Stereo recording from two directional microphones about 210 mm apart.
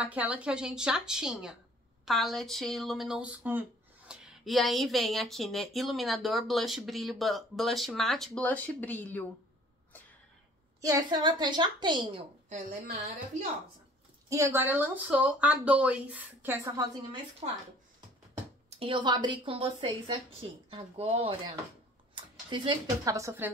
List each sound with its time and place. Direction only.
0.0 s speech: 5° right (ahead or behind)
10.8 s speech: 15° right (ahead or behind)
12.4 s a woman's voice: 35° right (ahead or behind)
14.3 s speech: 10° right (ahead or behind)
17.4 s speech: 30° right (ahead or behind)
18.7 s speech: 25° right (ahead or behind)